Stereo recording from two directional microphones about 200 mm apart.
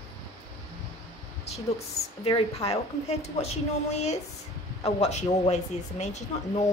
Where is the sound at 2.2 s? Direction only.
30° left (ahead or behind).